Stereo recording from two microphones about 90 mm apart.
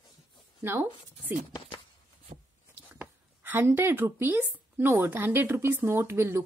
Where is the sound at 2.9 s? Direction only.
20° right (ahead or behind).